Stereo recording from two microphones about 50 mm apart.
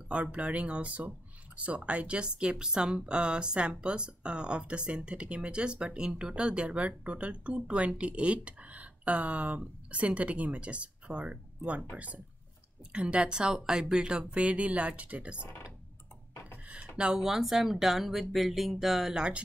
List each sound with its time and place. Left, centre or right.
0.1 s speech: right
16.9 s speech: centre